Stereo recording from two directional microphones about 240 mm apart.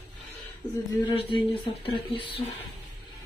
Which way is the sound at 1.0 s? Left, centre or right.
Centre.